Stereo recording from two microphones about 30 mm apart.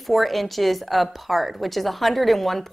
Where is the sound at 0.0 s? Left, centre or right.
Centre.